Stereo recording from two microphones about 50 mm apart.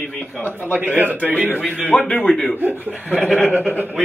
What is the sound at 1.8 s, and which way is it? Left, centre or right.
A man's voice, left.